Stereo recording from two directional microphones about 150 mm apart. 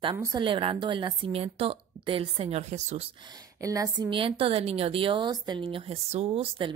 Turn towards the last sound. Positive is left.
turn(degrees=-35)  # may be behind; listen again after turning